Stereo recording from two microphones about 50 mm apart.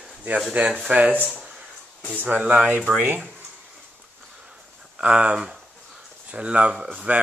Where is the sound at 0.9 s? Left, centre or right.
Right.